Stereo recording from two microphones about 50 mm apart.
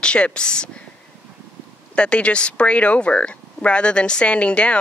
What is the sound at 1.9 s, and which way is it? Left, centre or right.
Speech, left.